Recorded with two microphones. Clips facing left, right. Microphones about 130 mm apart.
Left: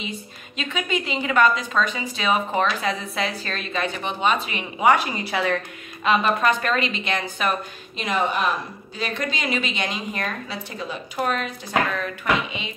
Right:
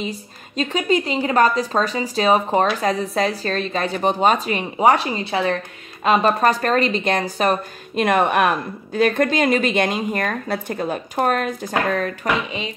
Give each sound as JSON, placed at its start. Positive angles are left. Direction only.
{"t": 0.0, "sound": "speech", "side_deg": -35}
{"t": 6.0, "sound": "speech", "side_deg": -40}
{"t": 8.0, "sound": "a woman's voice", "side_deg": -55}